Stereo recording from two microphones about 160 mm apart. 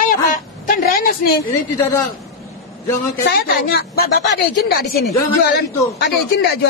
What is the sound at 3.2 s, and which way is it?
A woman's voice, 80° left.